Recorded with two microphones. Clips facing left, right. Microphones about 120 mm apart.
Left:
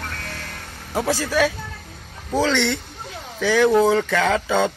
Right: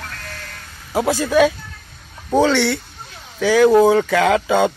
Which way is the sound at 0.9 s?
15° right (ahead or behind).